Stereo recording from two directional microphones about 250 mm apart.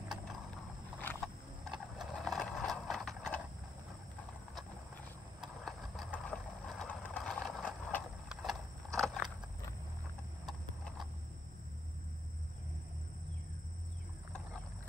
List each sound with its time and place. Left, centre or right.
1.0 s horse: centre
5.4 s vehicle: centre